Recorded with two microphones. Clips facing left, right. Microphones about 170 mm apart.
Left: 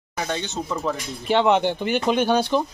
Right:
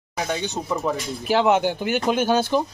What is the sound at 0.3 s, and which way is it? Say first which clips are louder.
Speech: right 2 dB; 10° right (ahead or behind).